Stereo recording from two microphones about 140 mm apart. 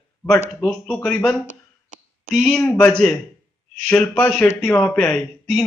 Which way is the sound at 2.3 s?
Centre (ahead or behind).